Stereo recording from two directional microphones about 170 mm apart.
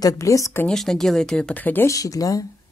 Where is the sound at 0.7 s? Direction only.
Centre (ahead or behind).